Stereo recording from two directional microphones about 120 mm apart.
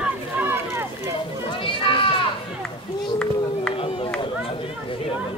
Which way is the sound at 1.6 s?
45° left (ahead or behind).